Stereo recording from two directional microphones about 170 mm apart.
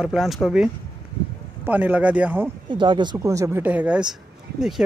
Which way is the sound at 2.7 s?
25° right (ahead or behind).